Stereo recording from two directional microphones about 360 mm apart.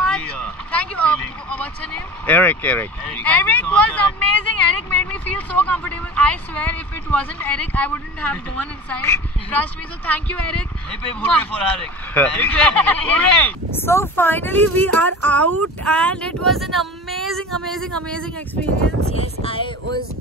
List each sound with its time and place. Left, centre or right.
0.1 s vehicle: centre
2.2 s speech: centre
4.9 s vehicle: centre
5.7 s speech: centre
15.5 s speech: right
15.9 s speech: centre
19.1 s speech: centre